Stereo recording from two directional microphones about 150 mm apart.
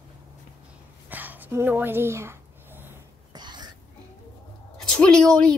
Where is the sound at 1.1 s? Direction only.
10° right (ahead or behind).